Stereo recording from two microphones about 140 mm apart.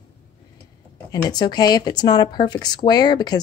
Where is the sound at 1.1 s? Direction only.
30° left (ahead or behind).